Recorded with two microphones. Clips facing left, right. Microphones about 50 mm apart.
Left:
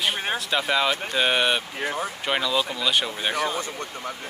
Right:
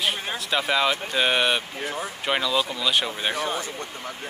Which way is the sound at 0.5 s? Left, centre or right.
Centre.